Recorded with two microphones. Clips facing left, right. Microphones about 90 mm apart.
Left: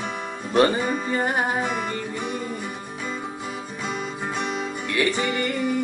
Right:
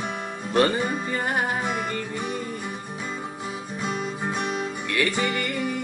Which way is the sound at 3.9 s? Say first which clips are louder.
Even; 5° right (ahead or behind).